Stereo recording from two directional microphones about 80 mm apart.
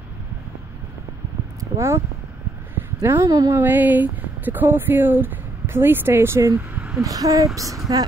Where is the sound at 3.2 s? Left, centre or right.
Right.